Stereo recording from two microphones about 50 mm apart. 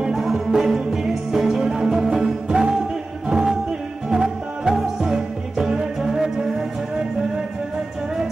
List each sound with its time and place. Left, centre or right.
0.0 s music: centre